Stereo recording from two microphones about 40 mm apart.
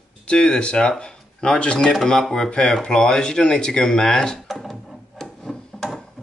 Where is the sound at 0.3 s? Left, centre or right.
Left.